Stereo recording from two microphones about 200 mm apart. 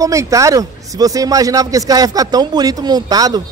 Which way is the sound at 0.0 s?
15° right (ahead or behind).